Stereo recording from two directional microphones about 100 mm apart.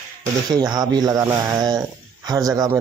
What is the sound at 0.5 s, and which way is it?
Speech, 40° right (ahead or behind).